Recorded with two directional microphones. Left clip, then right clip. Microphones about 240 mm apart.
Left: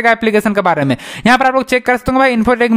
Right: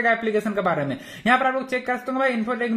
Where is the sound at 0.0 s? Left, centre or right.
Left.